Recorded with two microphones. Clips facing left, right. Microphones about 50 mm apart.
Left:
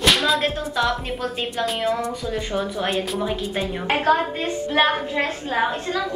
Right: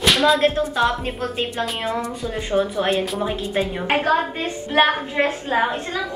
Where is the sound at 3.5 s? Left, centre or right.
Centre.